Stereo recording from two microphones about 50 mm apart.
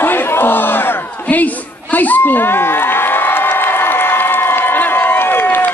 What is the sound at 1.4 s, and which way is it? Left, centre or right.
Crowd, left.